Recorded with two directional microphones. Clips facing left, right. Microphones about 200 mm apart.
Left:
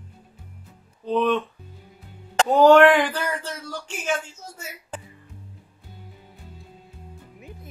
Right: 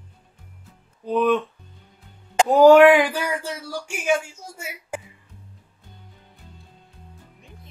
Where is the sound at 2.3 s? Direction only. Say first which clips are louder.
Right 2 dB; 10° right (ahead or behind).